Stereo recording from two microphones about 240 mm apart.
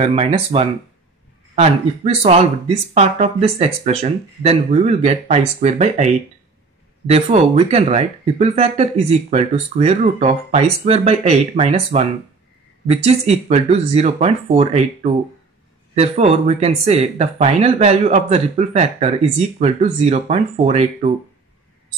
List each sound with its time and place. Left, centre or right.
0.0 s speech: right
7.1 s speech: right